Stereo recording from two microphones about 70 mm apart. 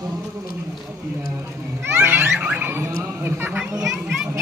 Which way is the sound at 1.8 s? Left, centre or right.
Right.